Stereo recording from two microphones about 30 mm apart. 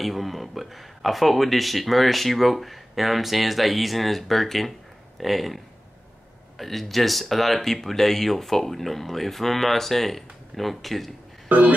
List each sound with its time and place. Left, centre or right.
0.0 s speech: centre
6.6 s speech: centre
11.4 s speech: right